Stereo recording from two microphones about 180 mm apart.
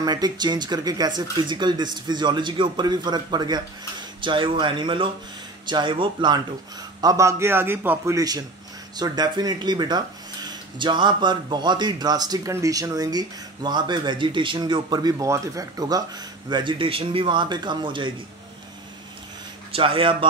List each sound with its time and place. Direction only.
0.0 s a man's voice: 20° right (ahead or behind)
19.7 s speech: 30° right (ahead or behind)